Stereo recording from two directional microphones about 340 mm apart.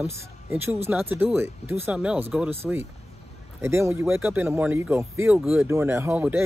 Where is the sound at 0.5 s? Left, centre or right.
Centre.